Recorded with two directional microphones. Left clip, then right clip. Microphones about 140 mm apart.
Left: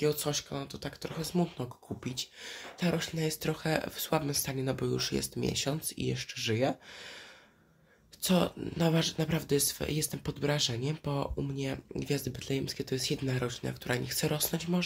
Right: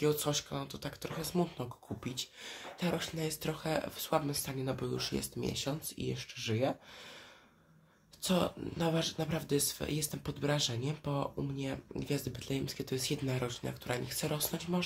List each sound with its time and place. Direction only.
0.0 s speech: 35° left (ahead or behind); by 6.7 s 55° left (ahead or behind)
8.2 s speech: 50° left (ahead or behind)